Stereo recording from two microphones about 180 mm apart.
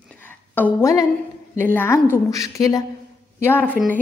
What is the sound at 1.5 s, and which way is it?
A woman's voice, 10° left (ahead or behind).